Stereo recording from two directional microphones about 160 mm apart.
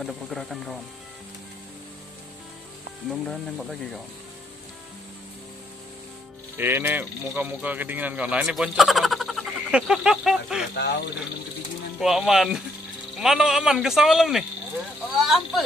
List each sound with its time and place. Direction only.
0.0 s speech: centre (ahead or behind)
3.1 s speech: centre (ahead or behind)
6.5 s speech: 15° right (ahead or behind)
10.7 s speech: 90° left
12.0 s speech: centre (ahead or behind)